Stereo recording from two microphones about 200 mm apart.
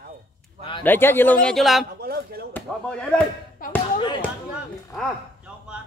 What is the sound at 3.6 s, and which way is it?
Music, 45° left (ahead or behind).